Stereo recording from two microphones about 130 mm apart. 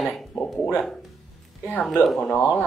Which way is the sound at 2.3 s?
10° left (ahead or behind).